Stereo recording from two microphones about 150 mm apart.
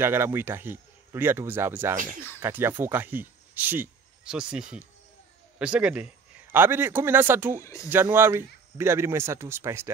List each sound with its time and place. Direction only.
0.0 s a man's voice: 15° right (ahead or behind)